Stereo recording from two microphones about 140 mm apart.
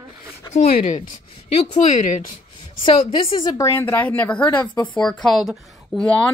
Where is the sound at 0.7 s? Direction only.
75° left (ahead or behind).